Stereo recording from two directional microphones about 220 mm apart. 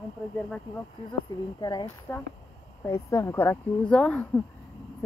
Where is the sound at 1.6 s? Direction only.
20° left (ahead or behind).